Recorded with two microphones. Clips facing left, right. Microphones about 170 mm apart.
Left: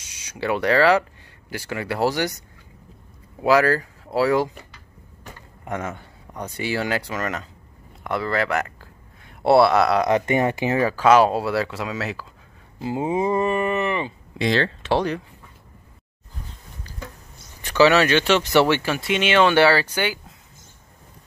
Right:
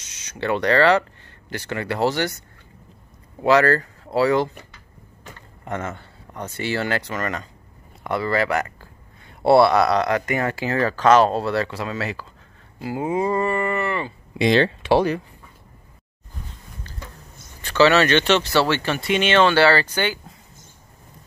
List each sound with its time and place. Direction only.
0.0 s speech: 10° left (ahead or behind)
3.3 s speech: 5° left (ahead or behind)
10.0 s speech: 20° left (ahead or behind); by 12.3 s centre (ahead or behind)
12.7 s speech: 20° left (ahead or behind)
14.4 s speech: 15° right (ahead or behind)
17.6 s speech: 15° left (ahead or behind)